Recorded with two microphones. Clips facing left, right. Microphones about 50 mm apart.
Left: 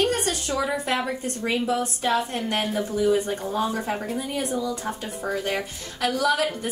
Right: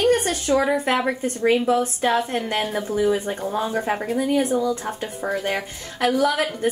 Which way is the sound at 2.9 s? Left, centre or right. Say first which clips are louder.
Right 1 dB; right.